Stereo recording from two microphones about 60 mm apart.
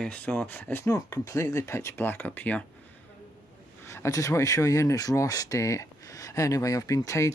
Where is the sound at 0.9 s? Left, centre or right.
Left.